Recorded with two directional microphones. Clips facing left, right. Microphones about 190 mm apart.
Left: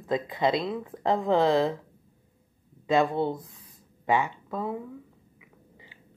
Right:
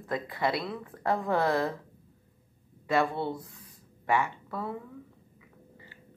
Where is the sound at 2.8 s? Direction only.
20° left (ahead or behind).